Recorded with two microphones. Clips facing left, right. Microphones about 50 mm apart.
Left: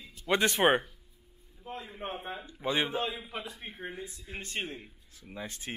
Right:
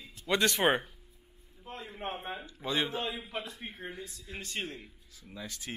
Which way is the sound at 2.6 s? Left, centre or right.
Centre.